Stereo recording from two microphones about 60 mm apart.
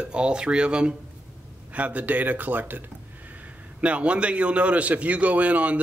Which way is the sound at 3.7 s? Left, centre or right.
Right.